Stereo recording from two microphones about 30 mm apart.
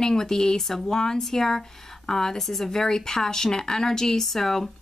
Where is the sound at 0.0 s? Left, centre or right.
Centre.